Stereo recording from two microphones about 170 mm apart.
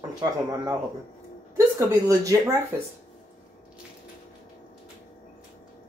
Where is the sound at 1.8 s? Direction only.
20° right (ahead or behind).